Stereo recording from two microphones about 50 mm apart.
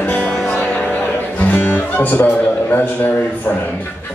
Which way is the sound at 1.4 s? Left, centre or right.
Left.